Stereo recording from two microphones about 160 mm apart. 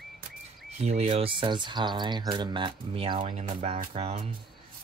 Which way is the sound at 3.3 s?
55° right (ahead or behind).